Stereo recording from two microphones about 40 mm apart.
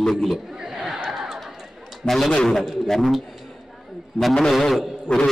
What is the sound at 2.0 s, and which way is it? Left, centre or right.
Speech, centre.